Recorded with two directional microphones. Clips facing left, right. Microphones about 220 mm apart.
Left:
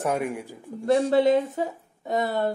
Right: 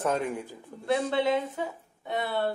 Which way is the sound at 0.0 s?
10° left (ahead or behind).